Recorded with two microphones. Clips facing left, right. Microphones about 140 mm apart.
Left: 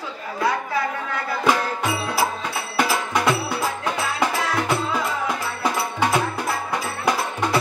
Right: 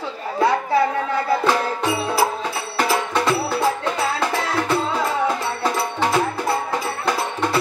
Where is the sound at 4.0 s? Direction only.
30° right (ahead or behind).